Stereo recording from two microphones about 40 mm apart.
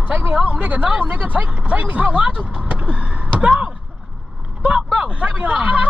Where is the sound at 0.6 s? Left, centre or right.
Right.